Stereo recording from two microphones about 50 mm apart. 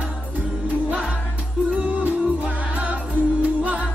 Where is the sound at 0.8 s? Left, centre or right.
Right.